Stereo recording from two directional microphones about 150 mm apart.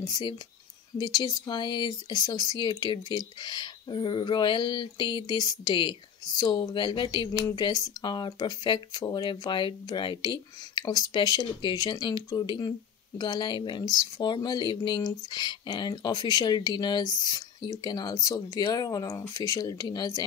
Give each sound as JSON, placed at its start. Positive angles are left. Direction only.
{"t": 0.0, "sound": "speech", "side_deg": 30}